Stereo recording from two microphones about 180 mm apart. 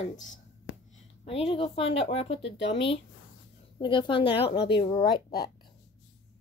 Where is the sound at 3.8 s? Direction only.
25° left (ahead or behind).